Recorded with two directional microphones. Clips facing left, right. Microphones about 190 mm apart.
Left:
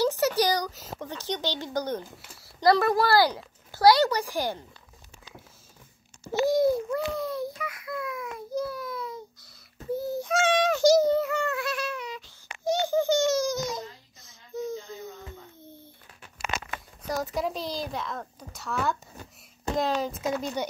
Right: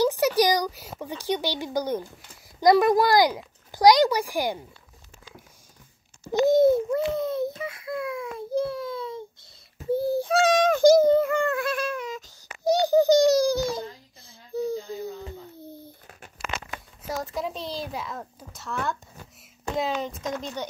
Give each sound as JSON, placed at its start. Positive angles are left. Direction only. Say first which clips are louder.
{"t": 0.0, "sound": "speech", "louder": "right 3 dB", "side_deg": -15}
{"t": 6.4, "sound": "babbling", "louder": "right 5 dB", "side_deg": -25}
{"t": 9.9, "sound": "a sound", "louder": "right 5 dB", "side_deg": -30}
{"t": 17.0, "sound": "a child's voice", "louder": "left 1 dB", "side_deg": 0}